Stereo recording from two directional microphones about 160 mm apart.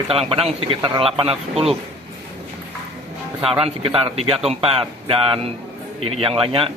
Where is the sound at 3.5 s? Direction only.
35° right (ahead or behind).